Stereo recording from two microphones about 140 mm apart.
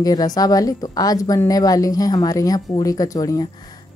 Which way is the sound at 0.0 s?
25° left (ahead or behind).